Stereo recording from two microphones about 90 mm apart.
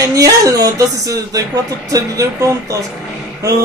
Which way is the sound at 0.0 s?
40° right (ahead or behind).